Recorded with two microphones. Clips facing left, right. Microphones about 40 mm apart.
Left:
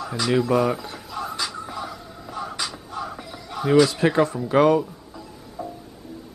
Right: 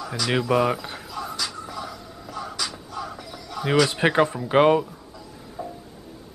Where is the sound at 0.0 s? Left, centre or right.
Centre.